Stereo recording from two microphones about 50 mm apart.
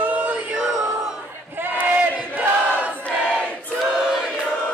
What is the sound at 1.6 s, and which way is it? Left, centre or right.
Battle cry, right.